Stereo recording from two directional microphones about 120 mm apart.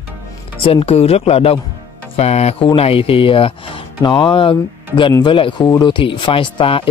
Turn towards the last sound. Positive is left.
turn(degrees=45)  # may be behind; listen again after turning